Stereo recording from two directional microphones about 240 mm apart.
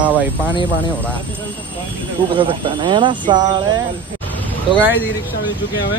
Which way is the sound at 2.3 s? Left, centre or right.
Right.